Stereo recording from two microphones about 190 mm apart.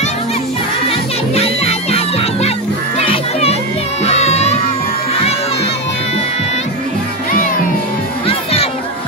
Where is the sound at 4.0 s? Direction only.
35° left (ahead or behind).